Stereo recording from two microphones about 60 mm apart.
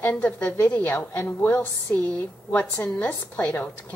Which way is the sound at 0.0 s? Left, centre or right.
Left.